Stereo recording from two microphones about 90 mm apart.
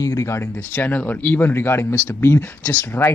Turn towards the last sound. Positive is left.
turn(degrees=25)  # may be behind; listen again after turning